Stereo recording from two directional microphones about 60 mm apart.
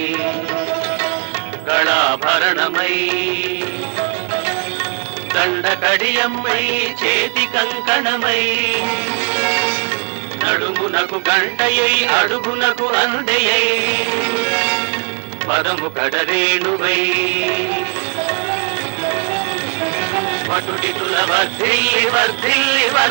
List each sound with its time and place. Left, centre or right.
1.7 s music: right
5.3 s music: right
10.4 s speech: right
20.2 s speech: right